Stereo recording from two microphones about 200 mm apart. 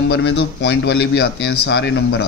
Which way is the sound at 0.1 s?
60° left (ahead or behind).